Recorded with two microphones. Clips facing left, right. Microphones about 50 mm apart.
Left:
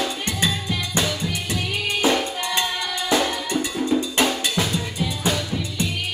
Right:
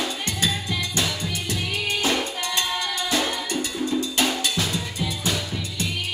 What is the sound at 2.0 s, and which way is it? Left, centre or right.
Music, centre.